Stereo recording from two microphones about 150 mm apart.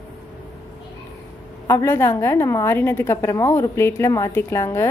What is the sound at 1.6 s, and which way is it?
A woman's voice, 15° left (ahead or behind).